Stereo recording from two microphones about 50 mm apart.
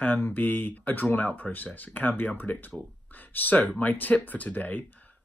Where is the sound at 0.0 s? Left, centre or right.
Left.